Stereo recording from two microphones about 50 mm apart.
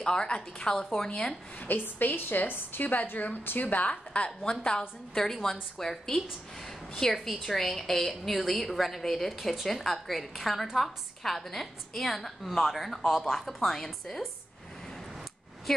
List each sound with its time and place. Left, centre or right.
0.0 s a woman's voice: centre
1.6 s a woman's voice: left; by 14.2 s centre